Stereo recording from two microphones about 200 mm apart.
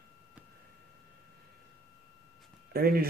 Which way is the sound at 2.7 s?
50° right (ahead or behind).